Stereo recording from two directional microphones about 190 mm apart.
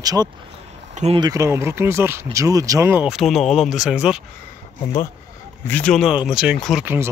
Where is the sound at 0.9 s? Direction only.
35° right (ahead or behind).